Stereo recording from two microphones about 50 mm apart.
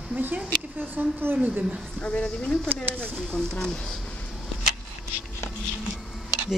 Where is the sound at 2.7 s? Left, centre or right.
Right.